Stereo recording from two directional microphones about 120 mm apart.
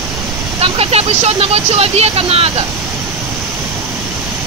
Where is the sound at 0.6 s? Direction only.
55° right (ahead or behind).